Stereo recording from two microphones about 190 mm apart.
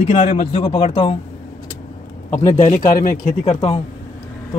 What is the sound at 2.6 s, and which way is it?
Speech, 45° left (ahead or behind).